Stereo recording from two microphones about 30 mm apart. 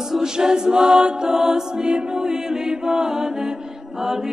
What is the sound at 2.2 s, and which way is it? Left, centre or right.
Chant, centre.